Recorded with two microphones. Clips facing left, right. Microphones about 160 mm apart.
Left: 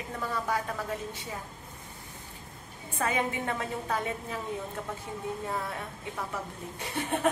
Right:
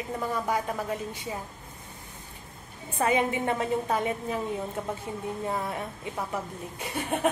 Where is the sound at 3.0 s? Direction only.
20° right (ahead or behind).